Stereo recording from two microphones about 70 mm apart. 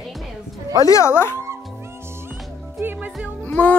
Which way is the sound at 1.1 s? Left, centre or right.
Left.